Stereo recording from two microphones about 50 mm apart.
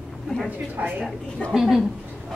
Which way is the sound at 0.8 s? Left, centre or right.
Right.